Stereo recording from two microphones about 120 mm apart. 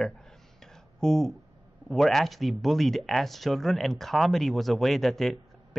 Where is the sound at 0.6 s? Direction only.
5° left (ahead or behind).